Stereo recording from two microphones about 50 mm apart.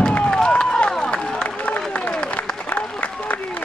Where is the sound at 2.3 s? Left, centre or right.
Left.